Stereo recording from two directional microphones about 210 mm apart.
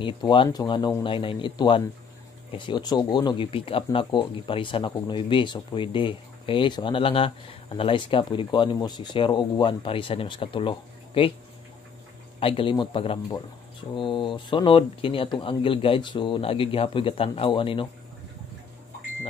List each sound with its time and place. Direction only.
0.0 s speech: 25° left (ahead or behind)
12.4 s speech: 25° left (ahead or behind)